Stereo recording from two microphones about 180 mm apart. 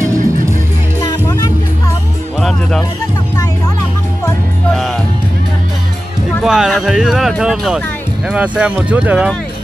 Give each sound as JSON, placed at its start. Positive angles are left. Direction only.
{"t": 1.0, "sound": "music", "side_deg": 20}
{"t": 4.7, "sound": "music", "side_deg": 0}
{"t": 6.4, "sound": "speech", "side_deg": -5}